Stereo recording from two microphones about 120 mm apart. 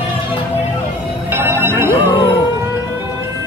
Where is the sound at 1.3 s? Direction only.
20° right (ahead or behind).